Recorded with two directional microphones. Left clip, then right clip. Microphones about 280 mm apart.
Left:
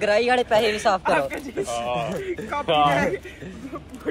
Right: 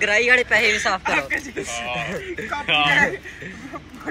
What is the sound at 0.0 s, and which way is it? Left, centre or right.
Speech, centre.